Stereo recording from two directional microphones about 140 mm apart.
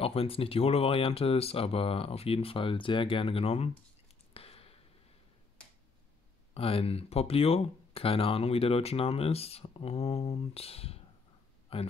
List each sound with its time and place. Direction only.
0.0 s speech: 45° left (ahead or behind)
4.3 s a sound: 45° left (ahead or behind)
6.5 s speech: 45° left (ahead or behind)